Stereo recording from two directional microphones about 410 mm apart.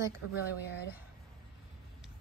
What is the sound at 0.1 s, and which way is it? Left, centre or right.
Speech, left.